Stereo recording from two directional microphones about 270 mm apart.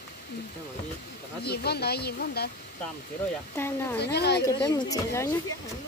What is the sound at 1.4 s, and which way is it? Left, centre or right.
Speech, left.